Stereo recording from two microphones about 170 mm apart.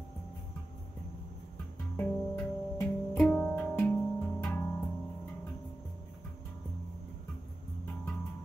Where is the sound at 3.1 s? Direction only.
5° left (ahead or behind).